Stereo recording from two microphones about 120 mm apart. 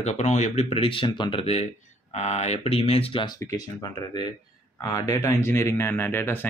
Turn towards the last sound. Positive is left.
turn(degrees=20)  # may be behind; listen again after turning